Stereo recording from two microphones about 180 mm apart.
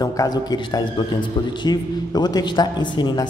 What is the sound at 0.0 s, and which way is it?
Speech, 20° left (ahead or behind).